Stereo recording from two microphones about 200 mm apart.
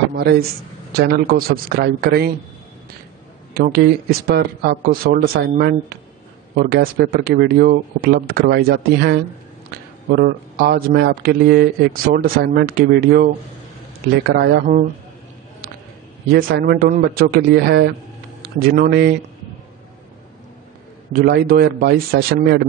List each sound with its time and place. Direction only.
0.1 s a man's voice: 50° right (ahead or behind)
3.5 s speech: 50° right (ahead or behind)
16.3 s speech: 50° right (ahead or behind)
21.1 s speech: 45° right (ahead or behind)